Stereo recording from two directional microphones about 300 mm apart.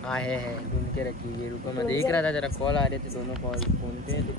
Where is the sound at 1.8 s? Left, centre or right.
Centre.